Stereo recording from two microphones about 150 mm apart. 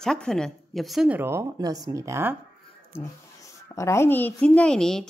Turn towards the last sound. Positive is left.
turn(degrees=5)  # may be behind; listen again after turning